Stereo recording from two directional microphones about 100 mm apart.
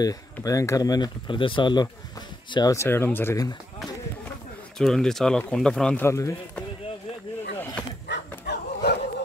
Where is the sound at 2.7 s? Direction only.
25° left (ahead or behind).